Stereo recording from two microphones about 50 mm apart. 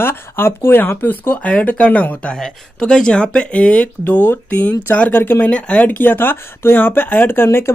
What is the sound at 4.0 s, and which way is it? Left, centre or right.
Speech, left.